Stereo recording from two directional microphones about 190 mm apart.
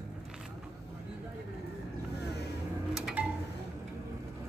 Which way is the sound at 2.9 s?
5° right (ahead or behind).